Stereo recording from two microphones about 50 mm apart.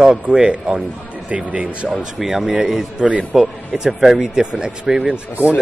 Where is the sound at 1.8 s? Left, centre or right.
Centre.